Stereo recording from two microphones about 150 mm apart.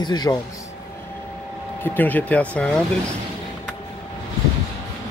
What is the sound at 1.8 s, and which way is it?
Speech, 10° left (ahead or behind).